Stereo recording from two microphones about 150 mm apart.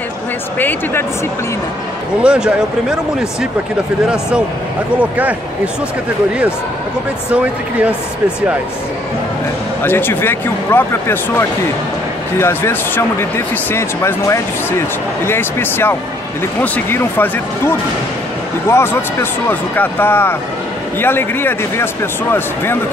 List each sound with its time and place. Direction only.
0.6 s speech: 15° left (ahead or behind)
2.2 s speech: 5° right (ahead or behind)
4.9 s speech: 10° right (ahead or behind)
7.2 s speech: 5° right (ahead or behind)
9.8 s speech: 15° left (ahead or behind)